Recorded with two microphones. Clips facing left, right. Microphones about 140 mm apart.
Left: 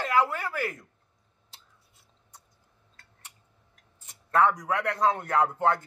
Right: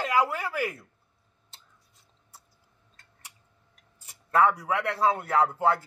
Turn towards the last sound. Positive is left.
turn(degrees=-5)  # may be behind; listen again after turning